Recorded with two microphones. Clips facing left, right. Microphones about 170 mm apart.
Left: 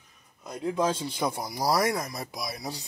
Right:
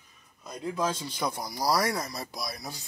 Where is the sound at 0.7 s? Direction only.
25° left (ahead or behind).